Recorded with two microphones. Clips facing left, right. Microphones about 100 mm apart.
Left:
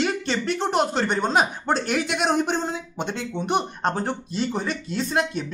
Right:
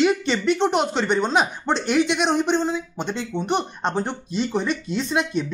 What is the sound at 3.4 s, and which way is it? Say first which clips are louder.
Speech: left 1 dB; 5° left (ahead or behind).